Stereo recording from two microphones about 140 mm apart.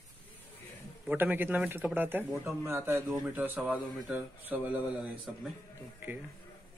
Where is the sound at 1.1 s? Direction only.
15° right (ahead or behind).